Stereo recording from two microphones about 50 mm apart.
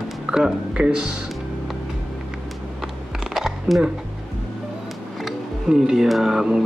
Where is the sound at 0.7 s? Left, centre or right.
Right.